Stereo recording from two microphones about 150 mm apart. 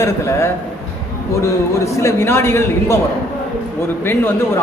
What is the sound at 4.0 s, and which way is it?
Speech, 15° left (ahead or behind).